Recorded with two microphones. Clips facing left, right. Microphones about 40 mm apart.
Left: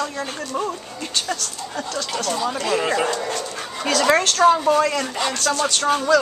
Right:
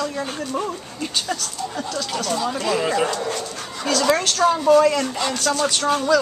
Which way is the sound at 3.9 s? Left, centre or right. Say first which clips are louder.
Left 1 dB; left.